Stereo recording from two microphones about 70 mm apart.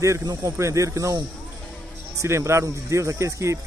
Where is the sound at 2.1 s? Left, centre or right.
Right.